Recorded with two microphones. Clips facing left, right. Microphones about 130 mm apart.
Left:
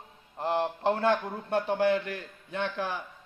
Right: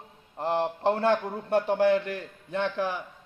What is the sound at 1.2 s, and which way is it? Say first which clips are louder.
Speech: right 3 dB; 5° right (ahead or behind).